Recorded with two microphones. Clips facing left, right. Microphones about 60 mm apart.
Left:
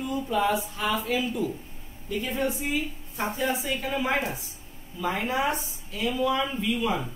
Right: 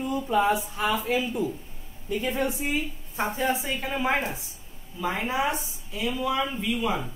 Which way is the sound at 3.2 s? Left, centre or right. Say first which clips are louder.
Right 1 dB; right.